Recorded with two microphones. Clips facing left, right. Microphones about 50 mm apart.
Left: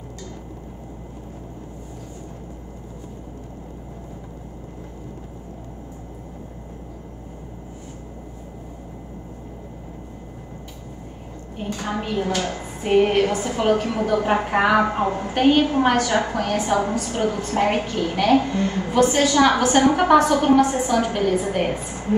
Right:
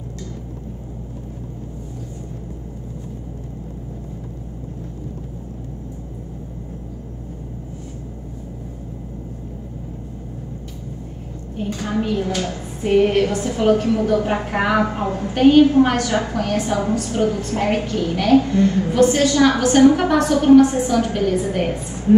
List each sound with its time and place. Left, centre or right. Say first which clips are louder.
11.5 s a woman's voice: right 4 dB; centre
15.0 s a woman's voice: even; left
15.3 s a woman's voice: right 6 dB; centre
16.3 s a woman's voice: even; centre